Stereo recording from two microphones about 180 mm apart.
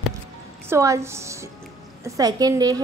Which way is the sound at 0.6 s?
15° right (ahead or behind).